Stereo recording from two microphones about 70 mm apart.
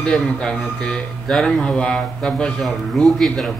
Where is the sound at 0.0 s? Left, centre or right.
Centre.